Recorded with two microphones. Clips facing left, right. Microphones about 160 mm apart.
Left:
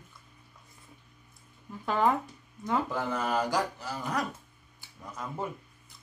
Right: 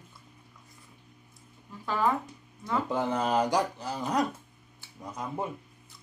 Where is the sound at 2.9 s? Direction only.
20° right (ahead or behind).